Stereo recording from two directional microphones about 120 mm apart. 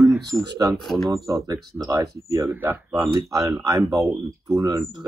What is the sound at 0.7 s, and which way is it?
Speech, centre (ahead or behind).